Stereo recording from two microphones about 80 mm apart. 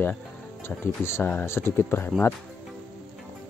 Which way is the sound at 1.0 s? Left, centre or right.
Left.